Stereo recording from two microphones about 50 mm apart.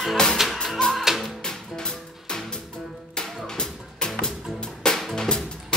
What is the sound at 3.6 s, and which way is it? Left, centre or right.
Music, centre.